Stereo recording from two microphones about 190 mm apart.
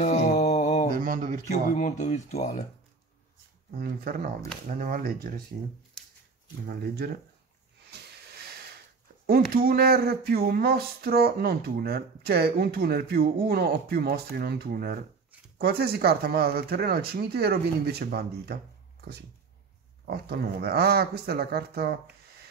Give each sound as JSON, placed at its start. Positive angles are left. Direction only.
{"t": 0.0, "sound": "mantra", "side_deg": 40}
{"t": 0.9, "sound": "a sound", "side_deg": -45}
{"t": 1.5, "sound": "speech", "side_deg": 40}
{"t": 3.7, "sound": "speech", "side_deg": -55}
{"t": 6.6, "sound": "speech", "side_deg": -55}
{"t": 7.9, "sound": "hiss", "side_deg": -60}
{"t": 9.2, "sound": "speech", "side_deg": -55}